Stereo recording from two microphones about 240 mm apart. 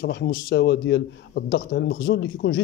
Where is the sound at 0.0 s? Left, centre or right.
Left.